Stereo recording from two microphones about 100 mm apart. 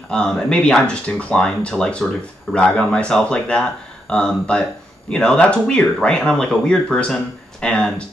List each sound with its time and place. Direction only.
0.1 s speech: 5° left (ahead or behind)